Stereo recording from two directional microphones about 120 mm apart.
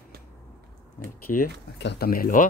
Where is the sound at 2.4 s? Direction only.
90° left.